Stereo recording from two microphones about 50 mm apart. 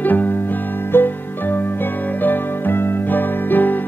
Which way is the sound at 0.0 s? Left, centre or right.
Left.